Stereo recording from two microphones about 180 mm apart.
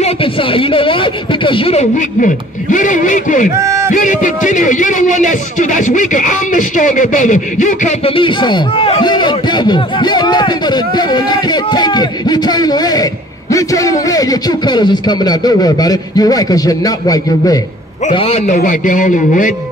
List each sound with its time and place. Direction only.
0.0 s speech: 30° left (ahead or behind); by 3.4 s 45° left (ahead or behind)
3.5 s a sound: 15° right (ahead or behind)
3.9 s a man's voice: 45° left (ahead or behind)
8.1 s a man's voice: 25° left (ahead or behind)
18.1 s a man's voice: 35° left (ahead or behind)